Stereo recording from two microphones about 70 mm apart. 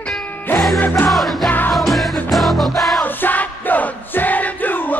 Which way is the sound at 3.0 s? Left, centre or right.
Left.